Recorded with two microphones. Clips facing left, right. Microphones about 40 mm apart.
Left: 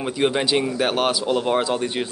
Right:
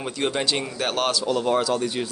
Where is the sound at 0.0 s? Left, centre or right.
Centre.